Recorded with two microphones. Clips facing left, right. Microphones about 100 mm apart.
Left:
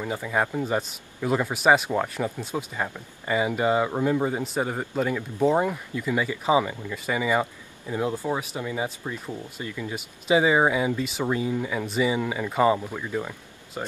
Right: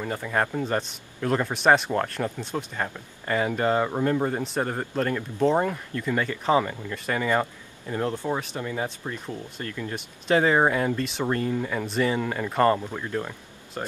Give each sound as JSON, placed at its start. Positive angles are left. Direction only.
{"t": 0.0, "sound": "speech", "side_deg": 5}